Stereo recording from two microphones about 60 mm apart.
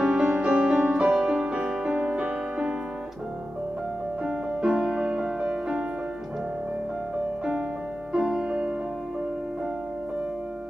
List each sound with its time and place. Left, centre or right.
0.0 s music: centre
2.0 s music: right
4.2 s music: centre
8.1 s music: centre